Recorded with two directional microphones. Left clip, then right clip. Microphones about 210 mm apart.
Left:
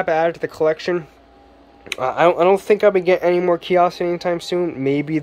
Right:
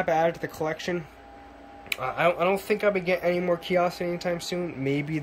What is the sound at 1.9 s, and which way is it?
Speech, 20° left (ahead or behind).